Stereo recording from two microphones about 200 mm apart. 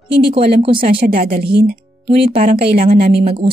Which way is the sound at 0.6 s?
25° right (ahead or behind).